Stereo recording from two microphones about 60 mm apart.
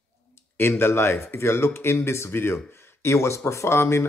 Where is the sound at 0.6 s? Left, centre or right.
Left.